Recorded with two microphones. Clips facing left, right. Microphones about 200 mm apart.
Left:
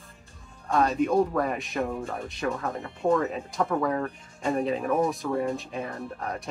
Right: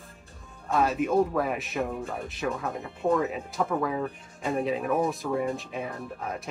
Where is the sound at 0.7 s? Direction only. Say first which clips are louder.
Left 1 dB; 5° right (ahead or behind).